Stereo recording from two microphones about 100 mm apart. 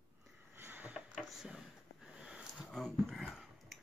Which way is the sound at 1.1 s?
5° right (ahead or behind).